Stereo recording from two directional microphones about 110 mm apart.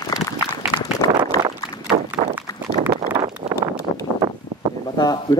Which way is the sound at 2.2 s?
70° right (ahead or behind).